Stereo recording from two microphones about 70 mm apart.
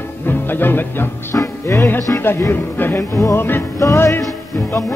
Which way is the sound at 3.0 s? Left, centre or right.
Left.